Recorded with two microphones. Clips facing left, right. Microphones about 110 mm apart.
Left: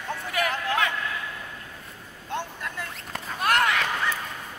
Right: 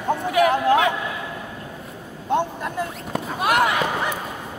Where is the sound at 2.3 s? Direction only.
20° right (ahead or behind).